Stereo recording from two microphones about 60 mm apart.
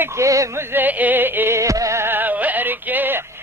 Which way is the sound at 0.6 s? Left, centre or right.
Right.